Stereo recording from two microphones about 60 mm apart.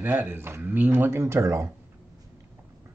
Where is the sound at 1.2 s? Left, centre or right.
Right.